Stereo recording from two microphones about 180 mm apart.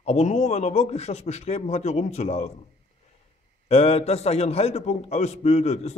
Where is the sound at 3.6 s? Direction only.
35° left (ahead or behind).